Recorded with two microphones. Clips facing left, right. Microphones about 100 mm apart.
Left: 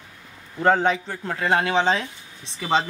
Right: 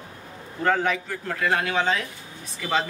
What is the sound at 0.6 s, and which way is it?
Speech, 25° left (ahead or behind).